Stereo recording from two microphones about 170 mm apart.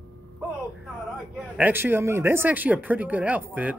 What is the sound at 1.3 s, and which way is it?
Speech, 10° right (ahead or behind).